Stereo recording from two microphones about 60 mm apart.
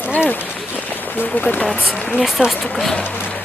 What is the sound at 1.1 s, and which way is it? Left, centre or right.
Speech, left.